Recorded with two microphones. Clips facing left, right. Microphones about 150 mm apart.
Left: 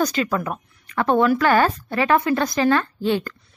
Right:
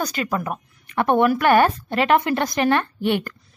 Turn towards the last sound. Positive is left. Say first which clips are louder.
# even
turn(degrees=-15)  # may be behind; listen again after turning